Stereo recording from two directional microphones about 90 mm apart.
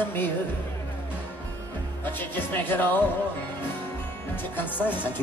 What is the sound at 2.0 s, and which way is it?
Speech, 20° left (ahead or behind).